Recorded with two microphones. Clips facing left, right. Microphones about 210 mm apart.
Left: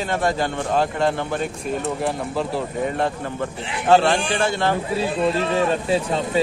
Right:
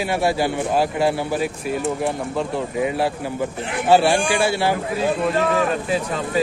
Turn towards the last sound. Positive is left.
turn(degrees=25)  # may be behind; listen again after turning